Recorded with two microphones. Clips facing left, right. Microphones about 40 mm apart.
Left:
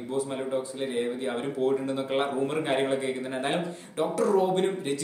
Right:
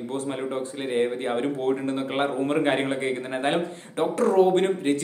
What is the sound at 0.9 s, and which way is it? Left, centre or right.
Speech, right.